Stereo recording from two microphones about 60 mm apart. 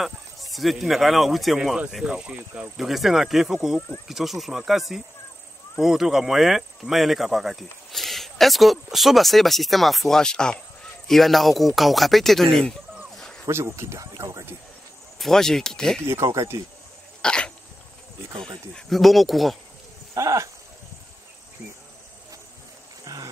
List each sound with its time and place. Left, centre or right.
0.0 s speech: centre
2.0 s speech: centre
2.8 s speech: centre
13.1 s snake: centre
13.5 s speech: right
15.1 s speech: centre
17.2 s cough: centre
18.9 s speech: centre
20.2 s speech: right
23.0 s cricket: right